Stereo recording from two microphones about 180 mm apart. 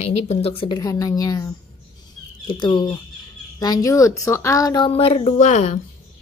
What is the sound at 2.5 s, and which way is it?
Speech, 25° left (ahead or behind).